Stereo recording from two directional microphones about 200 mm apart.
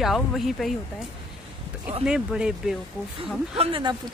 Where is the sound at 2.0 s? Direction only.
5° right (ahead or behind).